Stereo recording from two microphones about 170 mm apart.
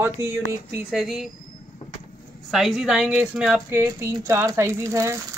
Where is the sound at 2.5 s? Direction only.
Centre (ahead or behind); by 5.2 s 15° right (ahead or behind).